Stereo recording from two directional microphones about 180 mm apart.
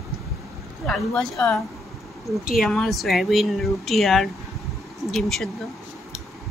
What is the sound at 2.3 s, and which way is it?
Speech, centre (ahead or behind).